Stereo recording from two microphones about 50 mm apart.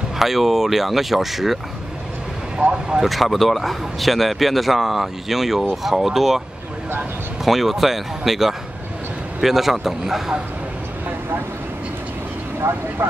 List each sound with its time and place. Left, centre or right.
0.2 s a man's voice: centre
2.5 s speech: centre
3.0 s a man's voice: centre
7.4 s a man's voice: centre